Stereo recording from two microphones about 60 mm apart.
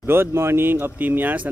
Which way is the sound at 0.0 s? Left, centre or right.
Right.